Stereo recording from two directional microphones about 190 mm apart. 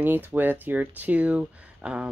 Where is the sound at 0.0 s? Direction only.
10° right (ahead or behind).